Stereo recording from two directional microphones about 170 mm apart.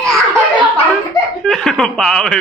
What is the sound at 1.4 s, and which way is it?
Chuckle, centre (ahead or behind).